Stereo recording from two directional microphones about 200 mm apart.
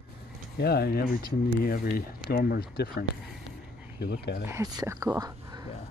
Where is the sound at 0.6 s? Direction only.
55° left (ahead or behind).